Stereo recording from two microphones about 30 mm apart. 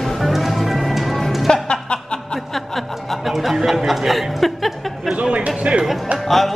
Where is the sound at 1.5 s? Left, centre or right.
Left.